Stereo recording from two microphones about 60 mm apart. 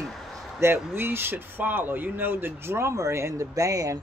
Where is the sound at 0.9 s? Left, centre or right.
Right.